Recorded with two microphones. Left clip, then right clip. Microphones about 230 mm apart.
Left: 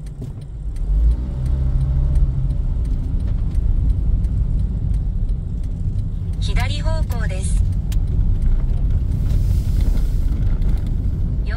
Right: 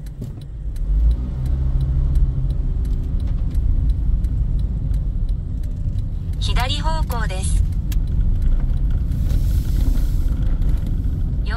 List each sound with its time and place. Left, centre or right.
6.4 s vehicle: right